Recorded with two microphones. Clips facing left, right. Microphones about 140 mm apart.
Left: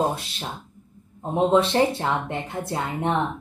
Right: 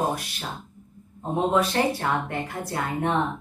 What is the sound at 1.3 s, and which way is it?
Speech, 25° left (ahead or behind).